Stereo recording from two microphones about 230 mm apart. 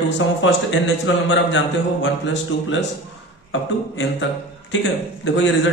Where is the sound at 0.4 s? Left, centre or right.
Left.